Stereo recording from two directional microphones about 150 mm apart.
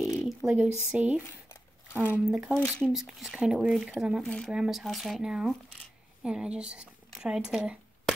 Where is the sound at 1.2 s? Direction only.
15° left (ahead or behind).